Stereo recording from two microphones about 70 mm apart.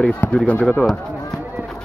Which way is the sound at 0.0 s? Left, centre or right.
Centre.